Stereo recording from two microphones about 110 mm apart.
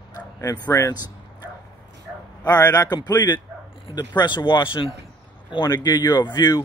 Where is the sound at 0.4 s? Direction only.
30° left (ahead or behind).